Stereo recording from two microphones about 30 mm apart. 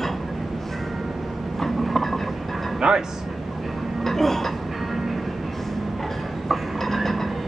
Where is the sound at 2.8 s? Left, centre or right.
Right.